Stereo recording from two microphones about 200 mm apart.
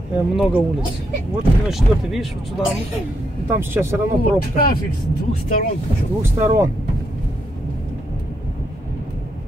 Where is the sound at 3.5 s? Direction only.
10° right (ahead or behind).